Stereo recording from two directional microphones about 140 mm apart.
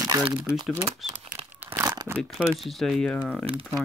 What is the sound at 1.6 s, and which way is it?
Crumpling, 15° right (ahead or behind).